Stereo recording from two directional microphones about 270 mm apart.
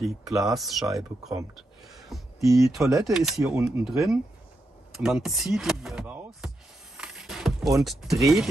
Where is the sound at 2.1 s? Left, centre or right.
Centre.